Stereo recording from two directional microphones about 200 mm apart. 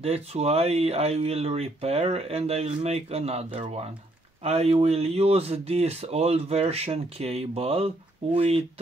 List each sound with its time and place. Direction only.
0.0 s speech: 30° right (ahead or behind)